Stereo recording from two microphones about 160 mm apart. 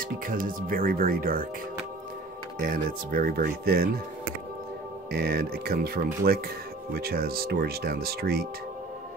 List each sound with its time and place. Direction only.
0.0 s speech: 60° right (ahead or behind)
2.6 s speech: 60° right (ahead or behind)
5.1 s speech: 75° right (ahead or behind)